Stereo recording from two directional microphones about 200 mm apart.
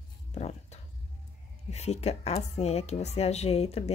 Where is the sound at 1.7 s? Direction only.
35° left (ahead or behind).